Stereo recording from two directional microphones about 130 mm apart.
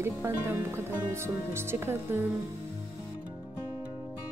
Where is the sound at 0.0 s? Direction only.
20° right (ahead or behind).